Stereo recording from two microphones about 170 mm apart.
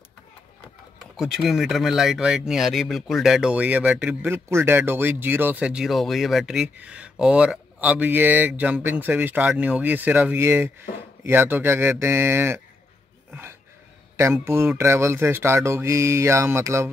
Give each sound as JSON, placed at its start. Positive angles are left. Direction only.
{"t": 1.1, "sound": "speech", "side_deg": 0}